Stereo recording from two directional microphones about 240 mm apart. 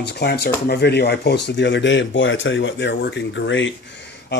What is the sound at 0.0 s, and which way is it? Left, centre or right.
Speech, left.